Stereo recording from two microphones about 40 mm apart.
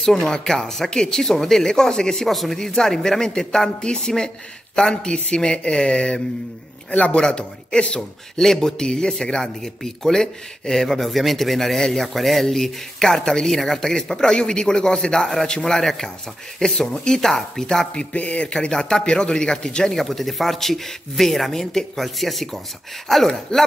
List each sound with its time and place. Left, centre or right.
0.0 s speech: centre
2.2 s speech: centre
2.6 s a man's voice: centre
6.9 s a man's voice: left
7.2 s a man's voice: left
8.4 s speech: centre
17.9 s a man's voice: left
18.5 s a man's voice: centre
20.0 s speech: centre